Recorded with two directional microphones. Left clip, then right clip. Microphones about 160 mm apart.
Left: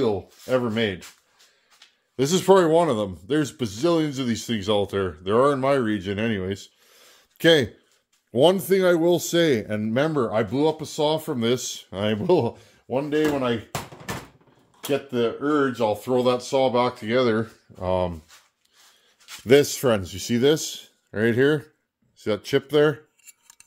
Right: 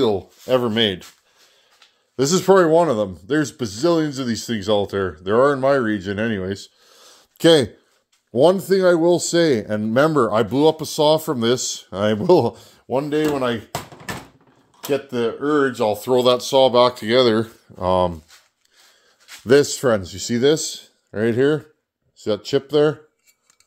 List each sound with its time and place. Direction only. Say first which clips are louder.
0.0 s speech: right 5 dB; 70° right (ahead or behind)
2.1 s speech: right 3 dB; 25° right (ahead or behind)
8.3 s a man's voice: right 3 dB; 10° right (ahead or behind)
9.9 s speech: right 7 dB; 35° right (ahead or behind)
10.2 s speech: right 6 dB; 50° right (ahead or behind)
14.9 s speech: right 2 dB; 40° right (ahead or behind)
19.4 s a man's voice: right 3 dB; 15° right (ahead or behind)